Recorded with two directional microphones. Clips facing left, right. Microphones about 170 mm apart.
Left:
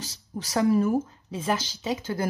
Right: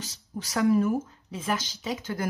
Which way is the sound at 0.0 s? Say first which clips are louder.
Left 1 dB; 35° left (ahead or behind).